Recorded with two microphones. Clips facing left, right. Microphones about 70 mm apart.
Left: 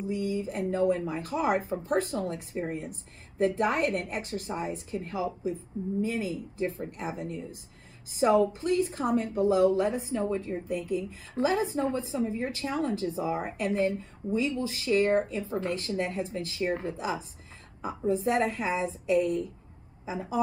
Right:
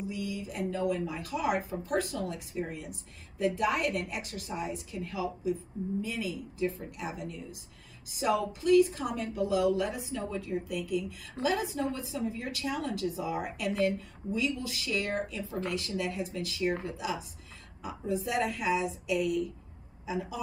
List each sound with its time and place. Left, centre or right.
0.1 s speech: left